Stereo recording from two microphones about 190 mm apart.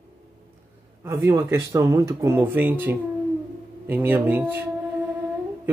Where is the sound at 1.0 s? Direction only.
15° right (ahead or behind).